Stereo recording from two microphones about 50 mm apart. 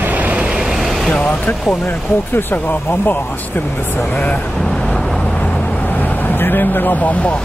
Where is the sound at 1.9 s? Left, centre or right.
Left.